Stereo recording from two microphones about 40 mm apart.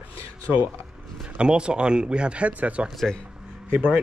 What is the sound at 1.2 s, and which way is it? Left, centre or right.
A man's voice, right.